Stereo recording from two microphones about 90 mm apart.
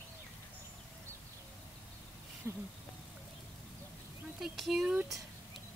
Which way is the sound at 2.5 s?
30° right (ahead or behind).